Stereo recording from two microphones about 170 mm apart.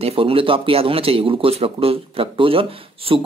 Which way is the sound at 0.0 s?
35° right (ahead or behind).